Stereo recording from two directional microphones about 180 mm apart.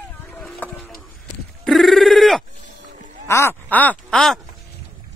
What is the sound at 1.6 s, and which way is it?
Telephone bell ringing, centre (ahead or behind).